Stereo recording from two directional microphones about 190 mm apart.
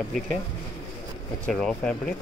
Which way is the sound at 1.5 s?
5° left (ahead or behind).